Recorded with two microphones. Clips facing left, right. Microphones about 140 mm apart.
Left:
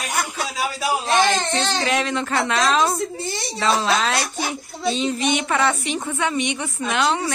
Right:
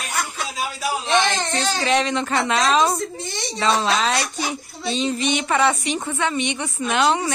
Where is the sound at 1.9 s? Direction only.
Centre (ahead or behind).